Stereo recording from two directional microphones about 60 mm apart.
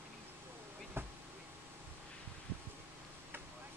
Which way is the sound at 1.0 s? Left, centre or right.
Right.